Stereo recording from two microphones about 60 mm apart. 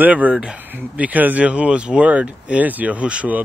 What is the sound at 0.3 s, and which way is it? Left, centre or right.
Speech, centre.